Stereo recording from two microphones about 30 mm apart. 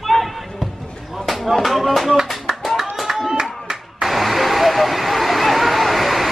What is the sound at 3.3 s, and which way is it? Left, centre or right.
Clapping, right.